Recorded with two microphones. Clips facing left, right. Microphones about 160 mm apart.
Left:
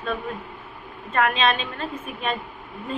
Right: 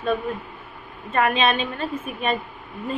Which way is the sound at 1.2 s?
5° right (ahead or behind).